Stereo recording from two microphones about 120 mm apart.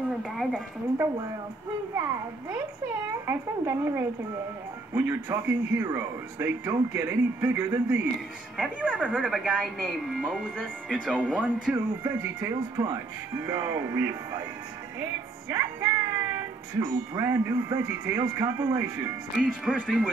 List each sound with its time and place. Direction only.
0.2 s a woman's voice: 5° right (ahead or behind)
3.3 s a woman's voice: 20° right (ahead or behind)
11.7 s speech: 20° right (ahead or behind)
15.5 s music: 25° right (ahead or behind)
16.8 s speech: 25° right (ahead or behind)
19.4 s a woman's voice: 5° right (ahead or behind)